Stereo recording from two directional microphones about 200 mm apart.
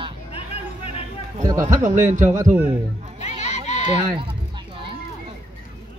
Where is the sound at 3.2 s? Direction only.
35° left (ahead or behind).